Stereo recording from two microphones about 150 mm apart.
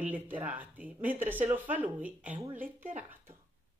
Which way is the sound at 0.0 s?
10° right (ahead or behind).